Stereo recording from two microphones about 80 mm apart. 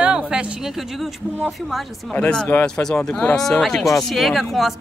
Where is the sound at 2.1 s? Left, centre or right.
Centre.